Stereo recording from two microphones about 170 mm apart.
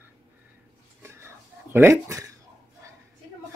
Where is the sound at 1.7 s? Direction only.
15° right (ahead or behind).